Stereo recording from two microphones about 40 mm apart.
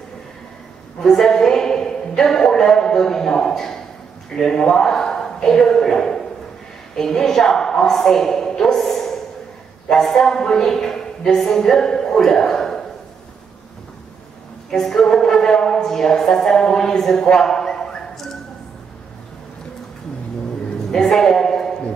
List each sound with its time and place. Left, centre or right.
1.0 s a woman's voice: centre
8.8 s a sound: centre
9.8 s a woman's voice: centre
14.7 s speech: centre
20.9 s a woman's voice: centre